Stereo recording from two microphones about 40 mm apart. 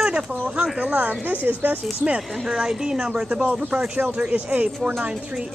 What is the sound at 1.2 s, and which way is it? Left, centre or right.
Speech, right.